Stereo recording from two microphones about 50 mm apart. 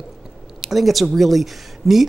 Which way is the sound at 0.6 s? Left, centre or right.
Centre.